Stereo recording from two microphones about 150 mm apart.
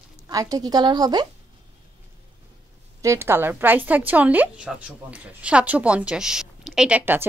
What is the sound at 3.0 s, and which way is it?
A woman's voice, 15° right (ahead or behind).